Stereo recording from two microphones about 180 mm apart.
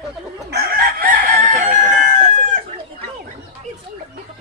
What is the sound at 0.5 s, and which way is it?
Chicken, 55° right (ahead or behind).